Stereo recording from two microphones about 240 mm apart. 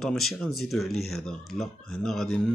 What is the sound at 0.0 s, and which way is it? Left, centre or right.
Speech, centre.